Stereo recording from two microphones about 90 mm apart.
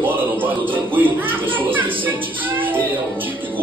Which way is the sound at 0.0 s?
20° right (ahead or behind).